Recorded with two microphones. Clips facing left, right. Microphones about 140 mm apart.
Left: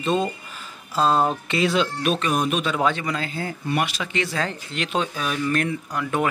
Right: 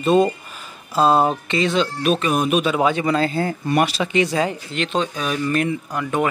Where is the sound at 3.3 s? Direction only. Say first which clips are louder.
Right 6 dB; 50° right (ahead or behind).